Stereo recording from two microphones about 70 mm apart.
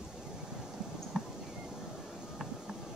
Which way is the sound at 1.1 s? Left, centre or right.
Centre.